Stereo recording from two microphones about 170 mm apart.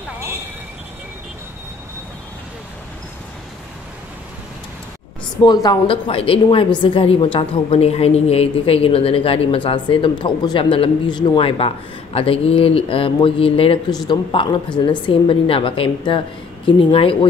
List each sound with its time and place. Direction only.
5.4 s a woman's voice: 25° left (ahead or behind)